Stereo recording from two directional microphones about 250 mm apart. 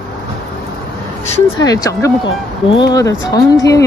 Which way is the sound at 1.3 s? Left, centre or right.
Centre.